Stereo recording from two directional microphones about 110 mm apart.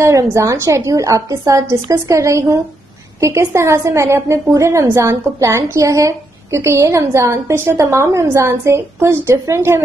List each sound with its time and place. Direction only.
0.0 s a woman's voice: 25° right (ahead or behind)